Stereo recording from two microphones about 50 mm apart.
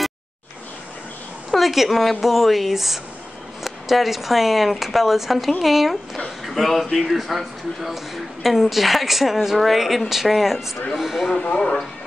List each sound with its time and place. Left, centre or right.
1.5 s a woman's voice: centre
11.2 s speech: centre